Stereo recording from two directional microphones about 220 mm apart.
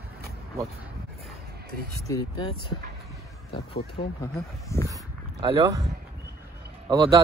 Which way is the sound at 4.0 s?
25° left (ahead or behind).